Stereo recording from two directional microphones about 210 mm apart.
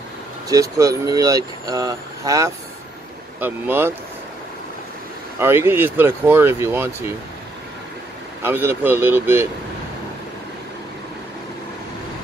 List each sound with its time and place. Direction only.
0.5 s speech: 15° right (ahead or behind)
5.4 s speech: 10° right (ahead or behind)
8.4 s speech: 10° right (ahead or behind)